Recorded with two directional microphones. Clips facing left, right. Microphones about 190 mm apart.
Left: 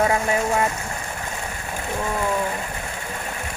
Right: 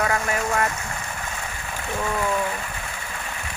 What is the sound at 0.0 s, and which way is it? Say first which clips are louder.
Speech: left 4 dB; 25° left (ahead or behind).